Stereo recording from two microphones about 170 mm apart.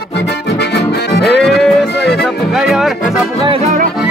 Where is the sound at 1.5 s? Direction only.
75° left (ahead or behind).